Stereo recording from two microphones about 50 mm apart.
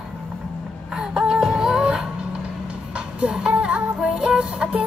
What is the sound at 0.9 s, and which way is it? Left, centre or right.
Music, centre.